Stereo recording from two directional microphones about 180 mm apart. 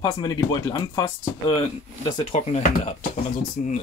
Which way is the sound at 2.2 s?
35° left (ahead or behind).